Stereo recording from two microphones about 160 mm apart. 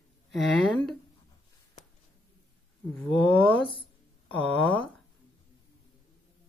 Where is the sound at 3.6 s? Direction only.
35° left (ahead or behind).